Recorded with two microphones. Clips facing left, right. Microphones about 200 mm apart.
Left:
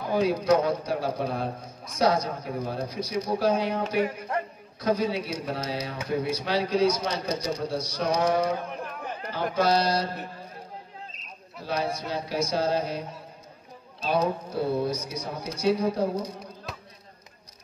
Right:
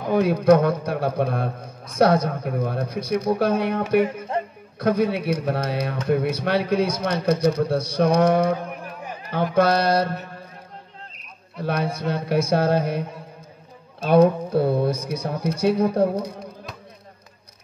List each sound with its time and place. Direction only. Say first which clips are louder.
0.0 s a man's voice: right 5 dB; 55° right (ahead or behind)
4.0 s music: right 5 dB; 25° right (ahead or behind)
4.7 s a man's voice: right 5 dB; 55° right (ahead or behind)
11.6 s a man's voice: right 5 dB; 55° right (ahead or behind)